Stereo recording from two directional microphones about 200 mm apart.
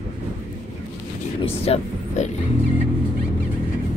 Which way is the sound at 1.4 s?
30° left (ahead or behind).